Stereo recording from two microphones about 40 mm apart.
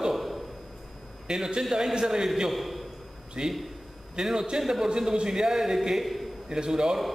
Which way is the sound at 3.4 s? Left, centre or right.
Centre.